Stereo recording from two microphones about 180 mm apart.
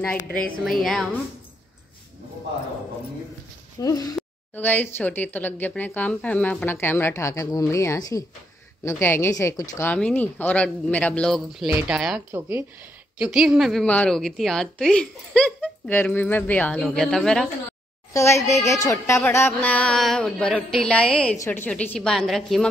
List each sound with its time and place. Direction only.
0.7 s a woman's voice: centre (ahead or behind)
3.8 s a woman's voice: 20° left (ahead or behind); by 17.5 s 5° left (ahead or behind)
18.1 s a child's voice: 15° left (ahead or behind)